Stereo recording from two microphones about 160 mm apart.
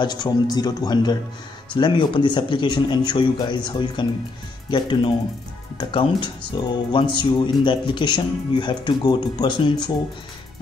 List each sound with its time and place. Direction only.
0.0 s speech: 25° left (ahead or behind)